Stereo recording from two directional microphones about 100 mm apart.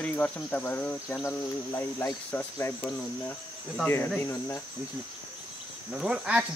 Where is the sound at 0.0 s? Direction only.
15° left (ahead or behind).